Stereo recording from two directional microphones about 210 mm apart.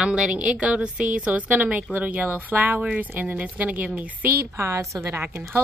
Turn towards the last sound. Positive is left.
turn(degrees=-10)  # may be behind; listen again after turning